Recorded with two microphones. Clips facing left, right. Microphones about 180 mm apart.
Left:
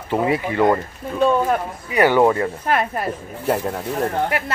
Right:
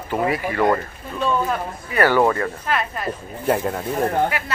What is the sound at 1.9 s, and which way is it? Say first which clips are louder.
Speech: left 2 dB; 20° left (ahead or behind).